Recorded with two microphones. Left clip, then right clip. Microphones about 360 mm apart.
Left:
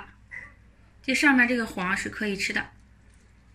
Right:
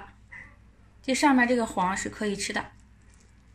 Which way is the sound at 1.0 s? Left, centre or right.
Centre.